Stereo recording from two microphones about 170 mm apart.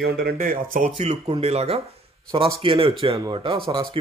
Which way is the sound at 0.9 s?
35° right (ahead or behind).